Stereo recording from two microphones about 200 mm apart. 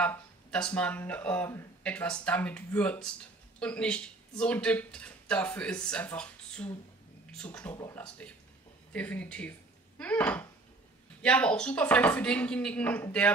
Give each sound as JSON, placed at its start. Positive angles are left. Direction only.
{"t": 0.0, "sound": "speech", "side_deg": 5}